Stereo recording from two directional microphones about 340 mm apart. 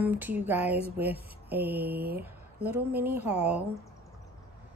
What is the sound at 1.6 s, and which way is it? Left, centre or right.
Mantra, right.